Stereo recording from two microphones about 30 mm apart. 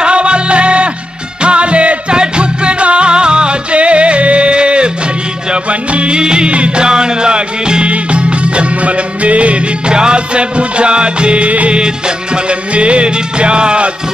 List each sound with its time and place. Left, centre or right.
0.0 s music: right
6.1 s music: right
6.8 s music: right
7.9 s music: right
9.9 s music: right